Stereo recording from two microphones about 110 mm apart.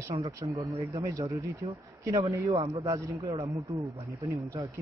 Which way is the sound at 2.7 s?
30° right (ahead or behind).